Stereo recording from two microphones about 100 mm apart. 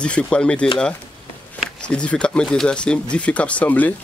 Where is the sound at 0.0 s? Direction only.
10° left (ahead or behind).